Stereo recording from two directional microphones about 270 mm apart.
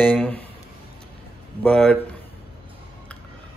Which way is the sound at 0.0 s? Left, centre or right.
Centre.